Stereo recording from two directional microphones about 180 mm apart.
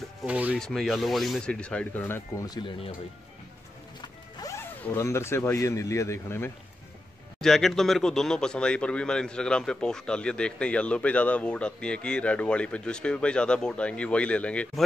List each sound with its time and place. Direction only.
0.2 s rub: 5° right (ahead or behind)
0.6 s speech: 5° left (ahead or behind); by 2.9 s 25° left (ahead or behind)
4.4 s speech: 15° left (ahead or behind)
7.4 s speech: centre (ahead or behind)